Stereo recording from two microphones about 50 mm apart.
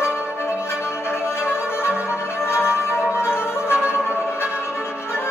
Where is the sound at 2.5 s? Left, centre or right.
Left.